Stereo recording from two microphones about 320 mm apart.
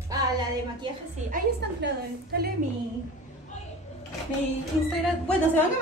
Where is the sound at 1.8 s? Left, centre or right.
Right.